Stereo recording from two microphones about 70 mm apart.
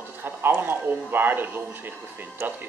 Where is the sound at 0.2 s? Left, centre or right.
Right.